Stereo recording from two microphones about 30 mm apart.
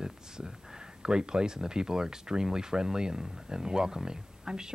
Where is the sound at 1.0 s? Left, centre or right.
Right.